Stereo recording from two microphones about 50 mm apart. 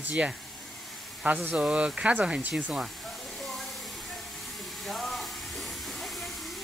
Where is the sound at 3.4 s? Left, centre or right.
Centre.